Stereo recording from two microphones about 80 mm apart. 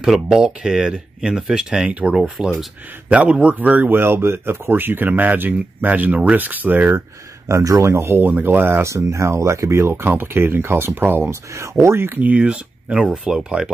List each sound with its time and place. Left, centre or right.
0.0 s speech: centre; by 7.0 s right
7.4 s speech: right
12.2 s speech: centre